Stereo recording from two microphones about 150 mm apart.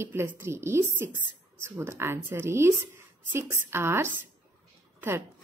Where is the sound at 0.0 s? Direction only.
15° right (ahead or behind).